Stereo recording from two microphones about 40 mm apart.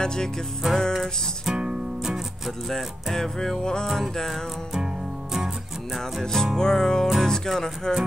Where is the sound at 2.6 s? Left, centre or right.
Centre.